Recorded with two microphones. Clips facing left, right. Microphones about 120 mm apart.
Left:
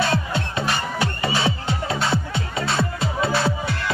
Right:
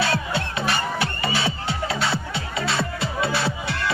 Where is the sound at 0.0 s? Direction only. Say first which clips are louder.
Left 1 dB; 45° left (ahead or behind).